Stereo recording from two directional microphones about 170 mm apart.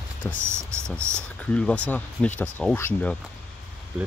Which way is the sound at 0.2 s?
10° left (ahead or behind).